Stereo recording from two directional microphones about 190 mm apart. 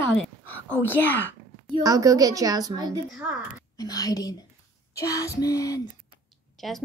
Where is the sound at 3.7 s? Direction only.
20° left (ahead or behind).